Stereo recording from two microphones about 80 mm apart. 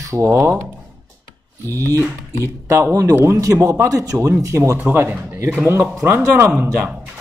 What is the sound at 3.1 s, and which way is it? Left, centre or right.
Speech, right.